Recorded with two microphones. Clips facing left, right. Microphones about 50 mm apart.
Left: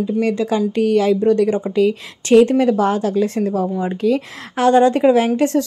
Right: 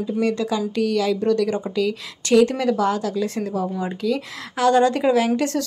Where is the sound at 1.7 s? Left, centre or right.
Left.